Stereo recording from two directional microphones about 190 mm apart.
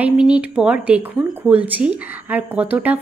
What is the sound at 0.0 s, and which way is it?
Speech, 5° right (ahead or behind).